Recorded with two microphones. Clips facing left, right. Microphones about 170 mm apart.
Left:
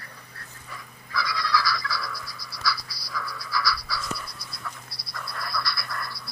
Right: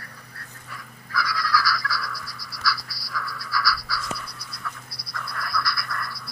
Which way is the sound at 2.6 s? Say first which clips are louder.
Right 1 dB; 20° left (ahead or behind).